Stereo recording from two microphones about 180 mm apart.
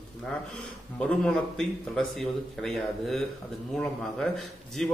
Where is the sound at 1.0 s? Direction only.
5° left (ahead or behind).